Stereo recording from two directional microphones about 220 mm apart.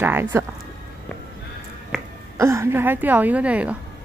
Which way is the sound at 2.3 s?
15° right (ahead or behind).